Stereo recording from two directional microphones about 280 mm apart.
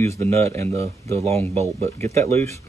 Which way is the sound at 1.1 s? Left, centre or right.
Right.